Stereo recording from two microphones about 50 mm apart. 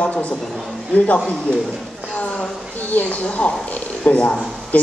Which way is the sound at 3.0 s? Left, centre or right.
Left.